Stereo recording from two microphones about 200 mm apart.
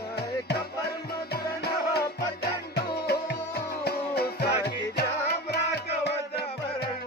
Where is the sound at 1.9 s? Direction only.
55° left (ahead or behind).